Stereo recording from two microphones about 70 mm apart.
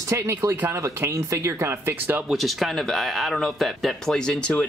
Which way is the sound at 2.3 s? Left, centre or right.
Centre.